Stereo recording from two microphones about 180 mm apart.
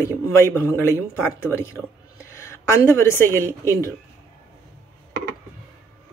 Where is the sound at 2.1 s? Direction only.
15° left (ahead or behind).